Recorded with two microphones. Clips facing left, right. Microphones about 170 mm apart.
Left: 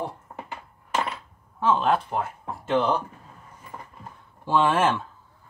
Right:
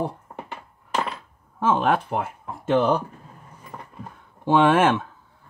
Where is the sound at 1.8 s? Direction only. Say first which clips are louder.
Right 2 dB; 60° right (ahead or behind).